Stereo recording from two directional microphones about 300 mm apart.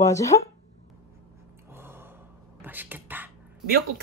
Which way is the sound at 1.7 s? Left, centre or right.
Centre.